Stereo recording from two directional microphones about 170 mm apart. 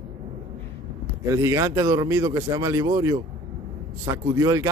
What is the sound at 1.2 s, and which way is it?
A man's voice, 15° right (ahead or behind).